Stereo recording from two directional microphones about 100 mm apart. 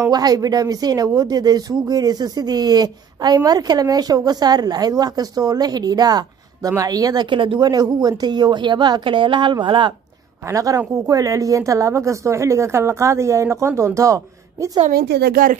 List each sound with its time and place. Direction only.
0.1 s speech: 40° right (ahead or behind)
10.5 s speech: 35° right (ahead or behind)